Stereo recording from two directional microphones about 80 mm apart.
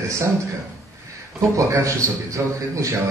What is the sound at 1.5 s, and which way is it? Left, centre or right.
A man's voice, right.